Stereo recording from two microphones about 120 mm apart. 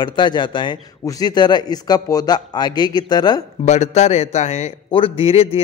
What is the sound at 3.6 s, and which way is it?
A man's voice, 75° left (ahead or behind).